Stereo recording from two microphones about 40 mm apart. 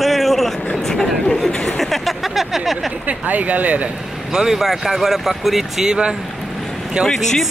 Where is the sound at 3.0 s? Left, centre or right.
Right.